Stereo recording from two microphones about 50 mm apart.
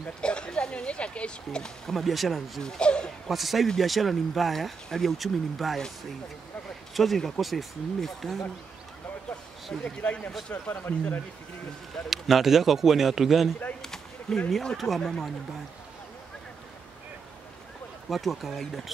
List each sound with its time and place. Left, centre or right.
0.0 s speech: centre
1.9 s speech: centre
2.6 s speech: centre
3.3 s speech: centre
6.9 s a sound: centre
7.2 s speech: centre
9.8 s speech: centre
10.5 s speech: left
12.1 s speech: centre
13.8 s a sound: centre
14.7 s speech: centre
18.1 s speech: centre